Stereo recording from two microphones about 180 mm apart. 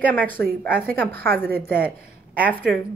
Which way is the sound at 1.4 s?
10° left (ahead or behind).